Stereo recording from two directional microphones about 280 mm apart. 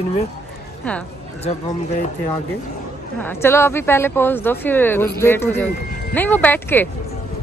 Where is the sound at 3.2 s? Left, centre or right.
Centre.